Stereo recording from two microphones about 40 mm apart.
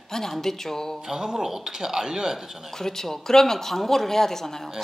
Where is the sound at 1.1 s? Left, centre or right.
Centre.